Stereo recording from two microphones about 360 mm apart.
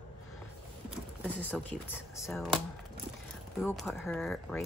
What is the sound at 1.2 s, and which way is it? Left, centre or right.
Speech, centre.